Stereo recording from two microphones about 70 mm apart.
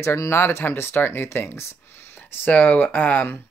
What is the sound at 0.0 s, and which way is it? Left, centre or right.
Speech, left.